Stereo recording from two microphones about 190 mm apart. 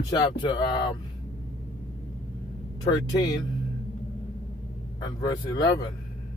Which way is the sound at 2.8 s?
20° left (ahead or behind).